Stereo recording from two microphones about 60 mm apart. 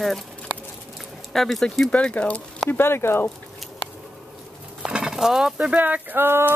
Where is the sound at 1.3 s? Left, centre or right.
Centre.